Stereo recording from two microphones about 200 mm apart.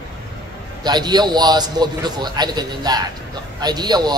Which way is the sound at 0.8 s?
20° right (ahead or behind).